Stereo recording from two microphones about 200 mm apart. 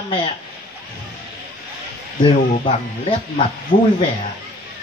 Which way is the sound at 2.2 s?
25° left (ahead or behind).